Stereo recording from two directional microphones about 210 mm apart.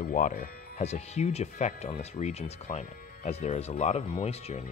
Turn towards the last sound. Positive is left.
turn(degrees=30)  # may be behind; listen again after turning